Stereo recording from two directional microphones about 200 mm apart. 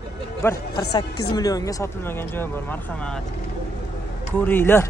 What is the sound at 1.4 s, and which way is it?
Speech, 15° left (ahead or behind).